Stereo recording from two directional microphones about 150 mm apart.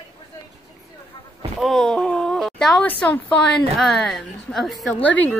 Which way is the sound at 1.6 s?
5° left (ahead or behind).